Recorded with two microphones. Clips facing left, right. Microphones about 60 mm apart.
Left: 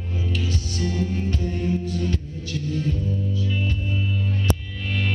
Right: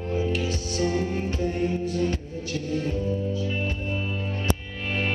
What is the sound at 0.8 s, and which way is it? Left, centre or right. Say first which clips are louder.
Music: right 1 dB; right.